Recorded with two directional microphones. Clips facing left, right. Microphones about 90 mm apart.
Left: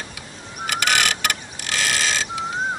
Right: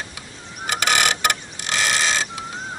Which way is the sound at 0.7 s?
25° right (ahead or behind).